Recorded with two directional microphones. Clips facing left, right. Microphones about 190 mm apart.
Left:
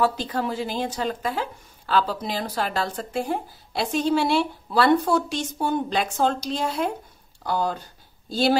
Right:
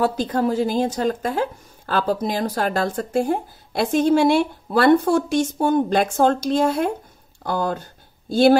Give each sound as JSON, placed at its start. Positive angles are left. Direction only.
{"t": 0.0, "sound": "speech", "side_deg": -40}